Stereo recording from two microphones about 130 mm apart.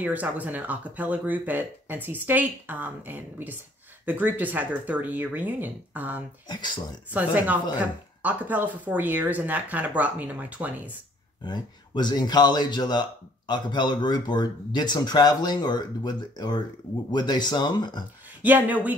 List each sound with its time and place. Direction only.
0.0 s speech: 10° right (ahead or behind)
6.5 s speech: 35° left (ahead or behind)
7.2 s speech: 10° right (ahead or behind)
11.4 s speech: 35° left (ahead or behind)
18.4 s speech: 15° right (ahead or behind)